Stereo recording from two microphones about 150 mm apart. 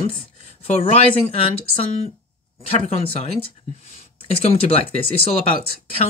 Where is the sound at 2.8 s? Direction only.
40° left (ahead or behind).